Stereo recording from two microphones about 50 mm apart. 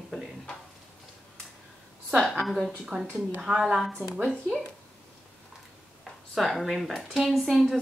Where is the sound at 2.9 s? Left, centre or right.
Centre.